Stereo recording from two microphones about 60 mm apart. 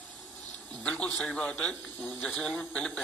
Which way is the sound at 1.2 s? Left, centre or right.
Centre.